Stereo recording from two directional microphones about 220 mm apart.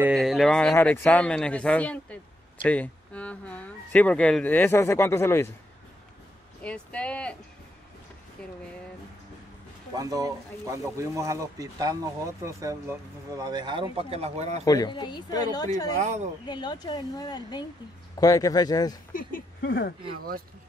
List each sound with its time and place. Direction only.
0.0 s a man's voice: centre (ahead or behind)
6.6 s a sound: 5° left (ahead or behind)
9.9 s a man's voice: 15° right (ahead or behind)
14.6 s speech: 15° left (ahead or behind)
16.0 s speech: 30° right (ahead or behind)
16.4 s speech: 20° left (ahead or behind)
19.1 s speech: 45° left (ahead or behind)